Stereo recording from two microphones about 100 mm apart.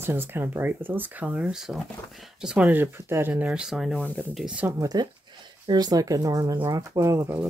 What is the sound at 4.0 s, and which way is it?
Speech, 15° left (ahead or behind).